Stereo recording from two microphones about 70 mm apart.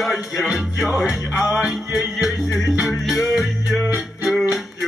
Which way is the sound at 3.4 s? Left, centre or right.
Centre.